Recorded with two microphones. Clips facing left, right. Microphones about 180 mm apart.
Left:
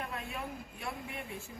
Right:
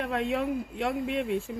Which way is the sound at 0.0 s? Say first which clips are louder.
Right 12 dB; 90° right.